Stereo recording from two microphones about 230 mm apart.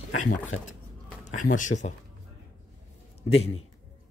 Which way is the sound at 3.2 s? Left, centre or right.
Left.